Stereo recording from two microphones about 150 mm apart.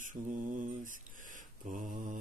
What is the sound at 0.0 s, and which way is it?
Mantra, 60° right (ahead or behind).